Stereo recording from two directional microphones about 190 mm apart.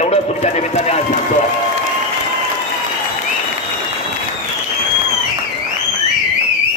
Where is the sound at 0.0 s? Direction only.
35° left (ahead or behind).